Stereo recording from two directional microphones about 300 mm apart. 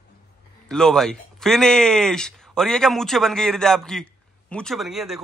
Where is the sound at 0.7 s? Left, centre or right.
Centre.